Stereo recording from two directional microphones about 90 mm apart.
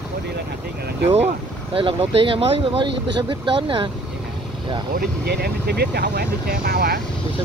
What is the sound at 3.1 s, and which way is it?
Speech, 70° right (ahead or behind).